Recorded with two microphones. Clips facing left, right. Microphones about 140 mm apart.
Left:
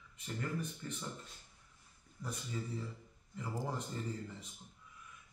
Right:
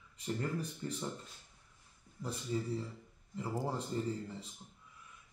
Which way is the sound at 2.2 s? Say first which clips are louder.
Right 5 dB; 30° right (ahead or behind).